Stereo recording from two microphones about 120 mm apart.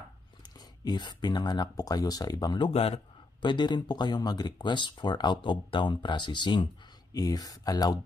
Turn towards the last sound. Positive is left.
turn(degrees=30)  # may be behind; listen again after turning